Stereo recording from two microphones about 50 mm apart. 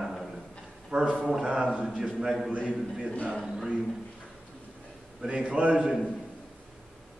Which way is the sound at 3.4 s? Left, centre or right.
Centre.